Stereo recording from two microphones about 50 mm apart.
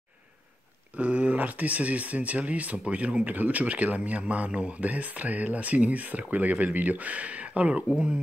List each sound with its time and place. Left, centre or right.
0.9 s speech: right